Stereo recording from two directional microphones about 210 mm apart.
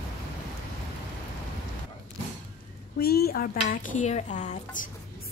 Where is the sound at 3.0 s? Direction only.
45° left (ahead or behind).